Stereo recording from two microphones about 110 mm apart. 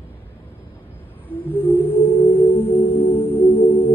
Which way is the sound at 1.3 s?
15° right (ahead or behind).